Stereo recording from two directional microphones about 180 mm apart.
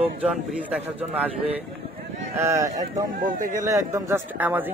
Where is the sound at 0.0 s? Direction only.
5° right (ahead or behind).